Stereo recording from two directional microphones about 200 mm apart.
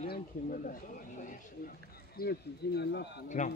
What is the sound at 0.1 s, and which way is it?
Speech, 45° left (ahead or behind).